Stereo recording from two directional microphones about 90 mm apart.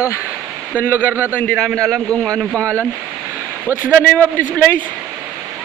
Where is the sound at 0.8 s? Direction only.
20° left (ahead or behind).